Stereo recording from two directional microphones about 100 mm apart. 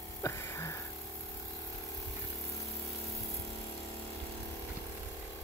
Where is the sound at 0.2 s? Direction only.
30° left (ahead or behind).